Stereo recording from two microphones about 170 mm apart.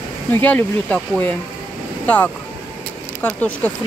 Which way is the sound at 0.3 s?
10° left (ahead or behind).